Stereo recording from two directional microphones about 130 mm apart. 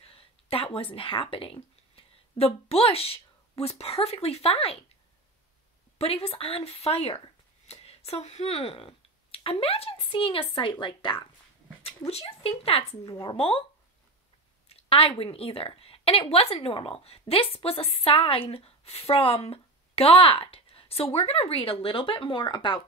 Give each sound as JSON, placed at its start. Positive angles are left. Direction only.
{"t": 0.0, "sound": "a sound", "side_deg": 50}
{"t": 0.7, "sound": "a woman's voice", "side_deg": 45}
{"t": 5.9, "sound": "a woman's voice", "side_deg": 50}
{"t": 12.1, "sound": "a woman's voice", "side_deg": 50}
{"t": 13.0, "sound": "a woman's voice", "side_deg": 30}
{"t": 13.4, "sound": "a woman's voice", "side_deg": 45}
{"t": 14.7, "sound": "a woman's voice", "side_deg": 45}